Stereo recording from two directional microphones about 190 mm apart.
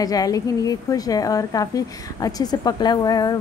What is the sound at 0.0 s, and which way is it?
A woman's voice, 20° left (ahead or behind).